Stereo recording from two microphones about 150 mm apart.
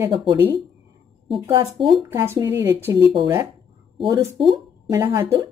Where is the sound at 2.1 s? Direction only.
20° right (ahead or behind).